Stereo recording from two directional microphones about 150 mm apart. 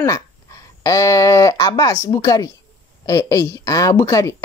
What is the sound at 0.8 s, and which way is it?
Speech, 20° left (ahead or behind).